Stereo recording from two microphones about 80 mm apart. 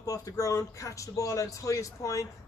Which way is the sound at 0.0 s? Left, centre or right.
Left.